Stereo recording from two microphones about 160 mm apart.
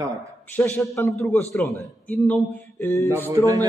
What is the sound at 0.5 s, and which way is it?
A man's voice, 10° left (ahead or behind).